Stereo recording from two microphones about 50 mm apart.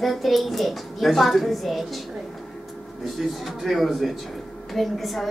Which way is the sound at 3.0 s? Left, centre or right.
Centre.